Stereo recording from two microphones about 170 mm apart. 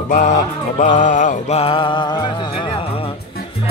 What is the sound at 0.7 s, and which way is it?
Speech, 50° left (ahead or behind).